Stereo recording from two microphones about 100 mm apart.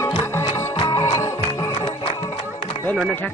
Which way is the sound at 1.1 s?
35° left (ahead or behind).